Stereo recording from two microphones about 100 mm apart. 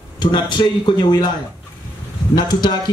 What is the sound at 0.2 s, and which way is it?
Speech, 50° left (ahead or behind).